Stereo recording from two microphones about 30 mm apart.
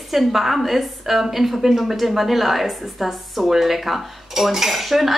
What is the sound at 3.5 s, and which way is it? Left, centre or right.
Cutlery, centre.